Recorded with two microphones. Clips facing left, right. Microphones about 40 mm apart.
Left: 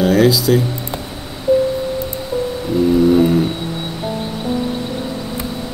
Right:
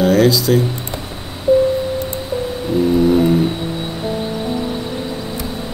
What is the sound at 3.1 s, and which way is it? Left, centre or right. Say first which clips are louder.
Music: left 1 dB; centre.